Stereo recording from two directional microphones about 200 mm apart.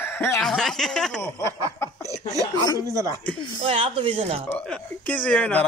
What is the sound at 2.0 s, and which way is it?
Speech, 15° right (ahead or behind).